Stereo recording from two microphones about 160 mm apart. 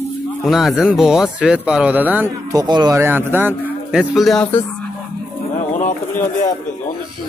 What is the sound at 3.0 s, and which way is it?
Speech, 15° right (ahead or behind).